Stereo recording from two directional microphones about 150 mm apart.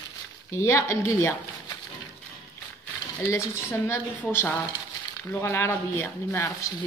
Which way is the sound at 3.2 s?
20° left (ahead or behind).